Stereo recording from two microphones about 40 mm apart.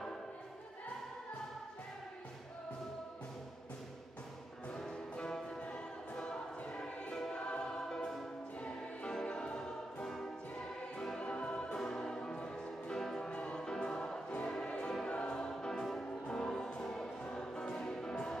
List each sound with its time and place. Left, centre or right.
4.7 s music: centre
5.6 s music: left
6.8 s choir: centre
9.1 s music: left
11.1 s music: left
13.0 s music: centre
13.3 s music: left
16.8 s choir: centre
17.2 s music: left